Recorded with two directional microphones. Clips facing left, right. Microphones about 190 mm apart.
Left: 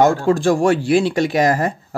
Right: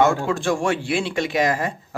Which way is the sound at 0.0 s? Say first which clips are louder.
Left 5 dB; 35° left (ahead or behind).